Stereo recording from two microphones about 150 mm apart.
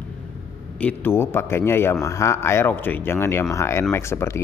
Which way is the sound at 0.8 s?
10° left (ahead or behind).